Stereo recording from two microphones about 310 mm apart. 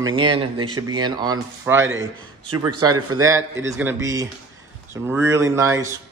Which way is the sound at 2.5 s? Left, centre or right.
Right.